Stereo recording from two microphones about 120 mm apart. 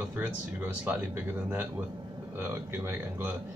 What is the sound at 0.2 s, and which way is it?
Speech, 15° right (ahead or behind).